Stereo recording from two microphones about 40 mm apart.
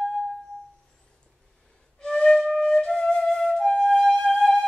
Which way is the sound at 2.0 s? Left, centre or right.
Left.